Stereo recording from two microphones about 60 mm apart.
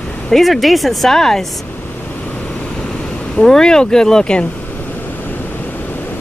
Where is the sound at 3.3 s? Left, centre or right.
Centre.